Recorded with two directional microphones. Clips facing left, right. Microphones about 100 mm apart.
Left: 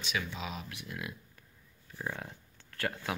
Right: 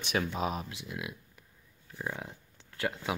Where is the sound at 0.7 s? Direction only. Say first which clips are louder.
Right 2 dB; 20° right (ahead or behind).